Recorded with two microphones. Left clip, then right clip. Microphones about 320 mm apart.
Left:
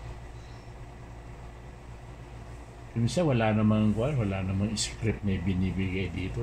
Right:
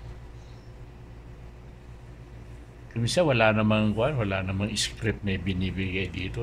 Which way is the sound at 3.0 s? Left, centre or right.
Right.